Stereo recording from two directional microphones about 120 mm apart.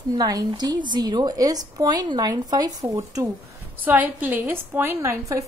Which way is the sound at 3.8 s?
15° right (ahead or behind).